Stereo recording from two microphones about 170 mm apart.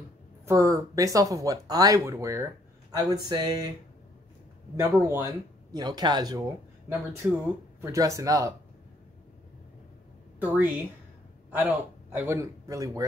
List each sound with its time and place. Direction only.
0.5 s speech: 20° right (ahead or behind)
4.7 s speech: 20° right (ahead or behind)
6.9 s speech: 15° right (ahead or behind)
11.5 s a man's voice: 10° right (ahead or behind)